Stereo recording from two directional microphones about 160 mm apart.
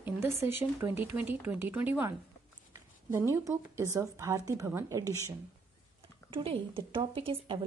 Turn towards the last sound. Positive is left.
turn(degrees=-35)  # may be behind; listen again after turning